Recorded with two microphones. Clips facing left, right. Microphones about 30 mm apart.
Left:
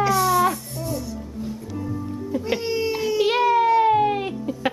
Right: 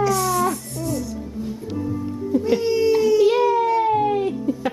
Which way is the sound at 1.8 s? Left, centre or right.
Centre.